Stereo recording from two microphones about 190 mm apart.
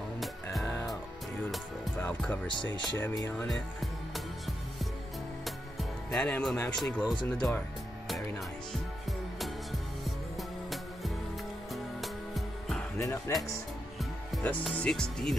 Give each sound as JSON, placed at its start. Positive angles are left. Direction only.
{"t": 2.0, "sound": "speech", "side_deg": 5}
{"t": 5.4, "sound": "music", "side_deg": 0}
{"t": 7.2, "sound": "speech", "side_deg": 10}
{"t": 9.4, "sound": "music", "side_deg": 0}
{"t": 13.0, "sound": "speech", "side_deg": 15}
{"t": 14.3, "sound": "speech", "side_deg": 5}